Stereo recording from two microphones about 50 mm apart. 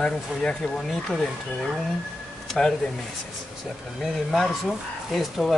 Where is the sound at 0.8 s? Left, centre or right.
Centre.